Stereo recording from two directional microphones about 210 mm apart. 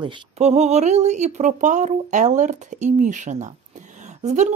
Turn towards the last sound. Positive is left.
turn(degrees=-35)  # may be behind; listen again after turning